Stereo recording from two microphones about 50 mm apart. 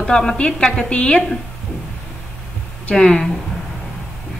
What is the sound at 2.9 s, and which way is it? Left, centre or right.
Speech, centre.